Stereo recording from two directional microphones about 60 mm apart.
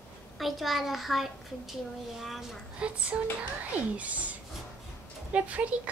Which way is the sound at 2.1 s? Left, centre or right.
Centre.